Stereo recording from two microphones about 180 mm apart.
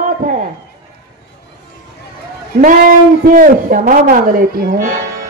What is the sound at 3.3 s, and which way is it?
Speech, 50° right (ahead or behind).